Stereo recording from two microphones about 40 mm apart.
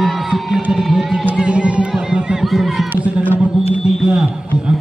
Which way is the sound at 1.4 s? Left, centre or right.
Right.